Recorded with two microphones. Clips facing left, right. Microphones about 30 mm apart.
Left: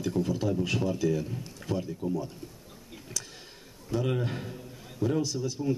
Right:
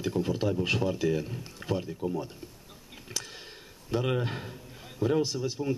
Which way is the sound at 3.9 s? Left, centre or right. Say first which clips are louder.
Right 1 dB; right.